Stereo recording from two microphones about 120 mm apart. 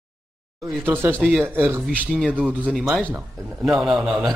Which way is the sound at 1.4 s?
20° right (ahead or behind).